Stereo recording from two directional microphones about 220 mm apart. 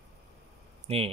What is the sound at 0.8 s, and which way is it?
Speech, 25° right (ahead or behind).